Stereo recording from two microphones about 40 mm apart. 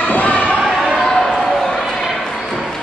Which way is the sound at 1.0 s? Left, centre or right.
Centre.